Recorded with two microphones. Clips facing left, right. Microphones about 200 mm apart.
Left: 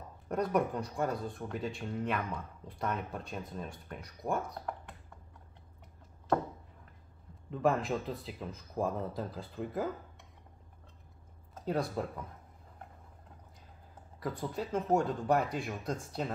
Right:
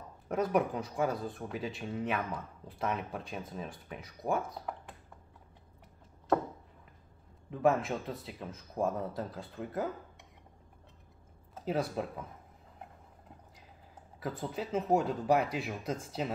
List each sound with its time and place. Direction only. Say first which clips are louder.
0.3 s speech: right 1 dB; 5° right (ahead or behind)
7.5 s speech: right 1 dB; centre (ahead or behind)
11.6 s speech: even; 5° right (ahead or behind)
14.2 s speech: even; 5° right (ahead or behind)